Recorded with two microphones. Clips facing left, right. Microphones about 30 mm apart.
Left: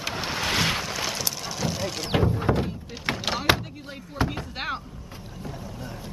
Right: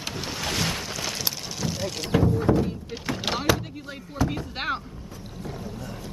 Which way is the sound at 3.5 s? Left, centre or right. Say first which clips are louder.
Left 1 dB; left.